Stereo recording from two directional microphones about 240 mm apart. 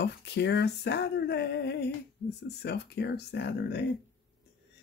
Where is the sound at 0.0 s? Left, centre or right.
Left.